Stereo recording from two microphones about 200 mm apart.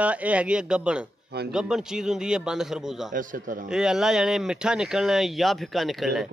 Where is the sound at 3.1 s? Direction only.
40° right (ahead or behind).